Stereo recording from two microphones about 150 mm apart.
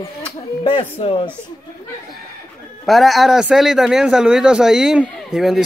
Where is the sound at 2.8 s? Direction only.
Centre (ahead or behind).